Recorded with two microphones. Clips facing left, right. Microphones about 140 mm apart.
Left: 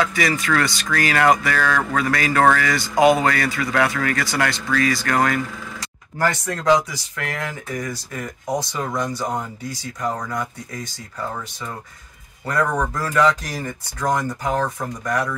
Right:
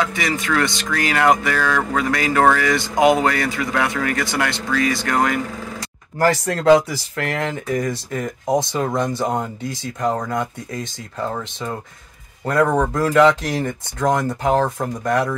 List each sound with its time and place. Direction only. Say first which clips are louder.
0.0 s speech: left 1 dB; 20° right (ahead or behind)
6.7 s speech: right 4 dB; 30° right (ahead or behind)
12.4 s speech: right 4 dB; 25° right (ahead or behind)